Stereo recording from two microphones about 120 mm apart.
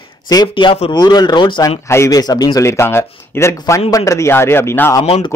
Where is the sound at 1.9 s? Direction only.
25° left (ahead or behind).